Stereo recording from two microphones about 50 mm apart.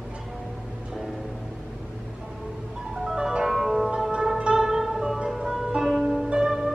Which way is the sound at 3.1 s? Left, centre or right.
Centre.